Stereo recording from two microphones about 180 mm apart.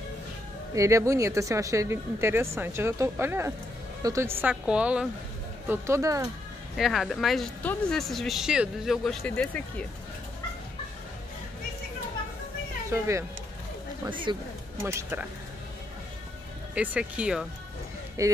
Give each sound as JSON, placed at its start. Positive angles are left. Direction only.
{"t": 0.7, "sound": "speech", "side_deg": -15}
{"t": 6.8, "sound": "speech", "side_deg": 0}
{"t": 12.9, "sound": "speech", "side_deg": -15}
{"t": 14.3, "sound": "speech", "side_deg": -25}
{"t": 14.8, "sound": "speech", "side_deg": -15}
{"t": 16.7, "sound": "speech", "side_deg": -5}
{"t": 18.2, "sound": "speech", "side_deg": -20}